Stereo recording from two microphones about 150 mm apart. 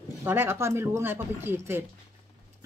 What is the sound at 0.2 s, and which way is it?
Speech, 15° right (ahead or behind).